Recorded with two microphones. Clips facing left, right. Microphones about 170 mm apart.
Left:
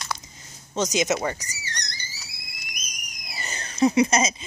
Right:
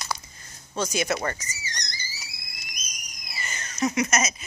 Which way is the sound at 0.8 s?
20° left (ahead or behind).